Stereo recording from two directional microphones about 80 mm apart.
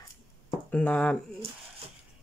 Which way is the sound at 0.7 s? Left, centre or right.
Centre.